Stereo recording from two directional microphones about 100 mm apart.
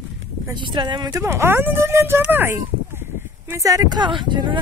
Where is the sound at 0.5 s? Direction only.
50° right (ahead or behind).